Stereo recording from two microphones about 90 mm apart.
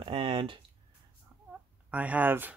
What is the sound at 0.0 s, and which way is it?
Speech, 90° right.